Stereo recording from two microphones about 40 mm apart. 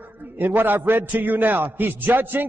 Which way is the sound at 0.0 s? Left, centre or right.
Right.